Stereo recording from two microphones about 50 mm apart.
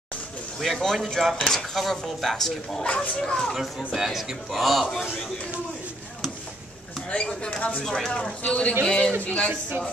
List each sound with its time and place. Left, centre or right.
0.6 s a man's voice: centre
2.8 s speech: left
3.2 s speech: centre
3.5 s a man's voice: centre
7.1 s speech: left
7.8 s speech: centre
8.5 s speech: left
9.2 s speech: left